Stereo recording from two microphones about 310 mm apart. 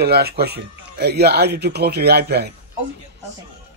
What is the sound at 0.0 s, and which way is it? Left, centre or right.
Speech, right.